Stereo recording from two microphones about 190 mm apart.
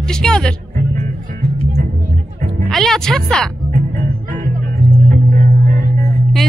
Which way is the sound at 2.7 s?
Centre (ahead or behind).